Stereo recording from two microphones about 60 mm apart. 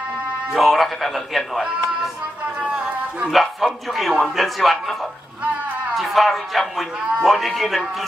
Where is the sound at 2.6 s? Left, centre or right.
Right.